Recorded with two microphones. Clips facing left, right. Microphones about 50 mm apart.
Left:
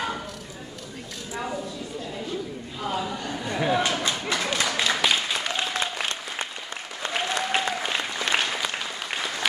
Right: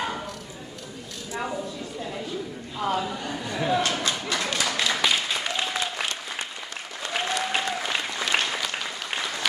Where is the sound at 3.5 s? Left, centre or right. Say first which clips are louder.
Left 1 dB; centre.